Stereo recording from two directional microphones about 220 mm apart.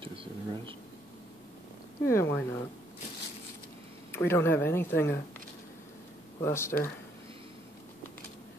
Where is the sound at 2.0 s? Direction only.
10° left (ahead or behind).